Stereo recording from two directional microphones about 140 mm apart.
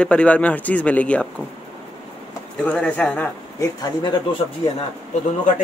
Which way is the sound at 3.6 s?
30° left (ahead or behind).